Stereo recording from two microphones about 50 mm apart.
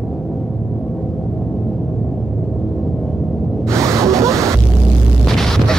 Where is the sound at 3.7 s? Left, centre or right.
Right.